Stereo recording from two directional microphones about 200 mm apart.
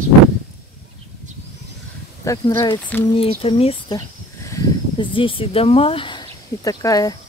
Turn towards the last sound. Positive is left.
turn(degrees=15)  # may be behind; listen again after turning